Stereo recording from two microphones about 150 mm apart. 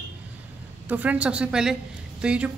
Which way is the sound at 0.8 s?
10° right (ahead or behind).